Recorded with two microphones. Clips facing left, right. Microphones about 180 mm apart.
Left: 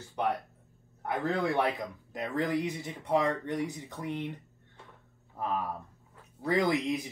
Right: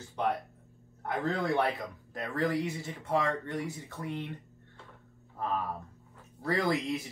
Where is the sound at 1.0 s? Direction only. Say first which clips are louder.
Left 1 dB; 10° left (ahead or behind).